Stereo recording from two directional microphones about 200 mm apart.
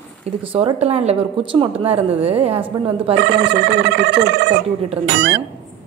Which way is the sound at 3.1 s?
60° right (ahead or behind).